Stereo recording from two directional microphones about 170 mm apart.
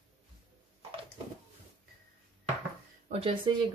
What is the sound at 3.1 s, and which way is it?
Speech, 30° right (ahead or behind).